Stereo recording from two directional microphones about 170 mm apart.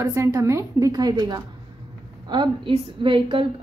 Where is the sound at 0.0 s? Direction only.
15° right (ahead or behind).